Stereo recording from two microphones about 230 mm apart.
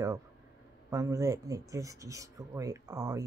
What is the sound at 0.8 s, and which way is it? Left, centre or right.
Speech, centre.